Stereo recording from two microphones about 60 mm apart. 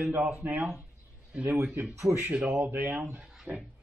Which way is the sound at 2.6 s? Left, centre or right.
Right.